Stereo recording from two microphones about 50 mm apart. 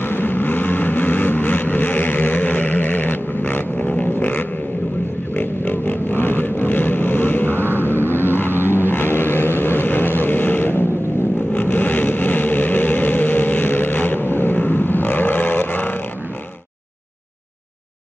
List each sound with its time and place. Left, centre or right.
0.0 s vehicle: left